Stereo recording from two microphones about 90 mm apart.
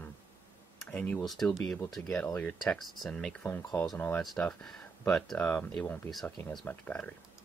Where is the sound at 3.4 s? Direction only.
35° left (ahead or behind).